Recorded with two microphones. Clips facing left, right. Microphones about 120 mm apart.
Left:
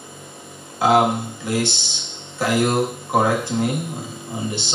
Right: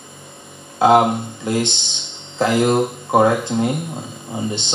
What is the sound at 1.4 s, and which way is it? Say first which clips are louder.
Speech: right 2 dB; 20° right (ahead or behind).